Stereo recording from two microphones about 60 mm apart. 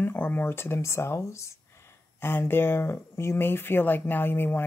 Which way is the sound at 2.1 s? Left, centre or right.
Left.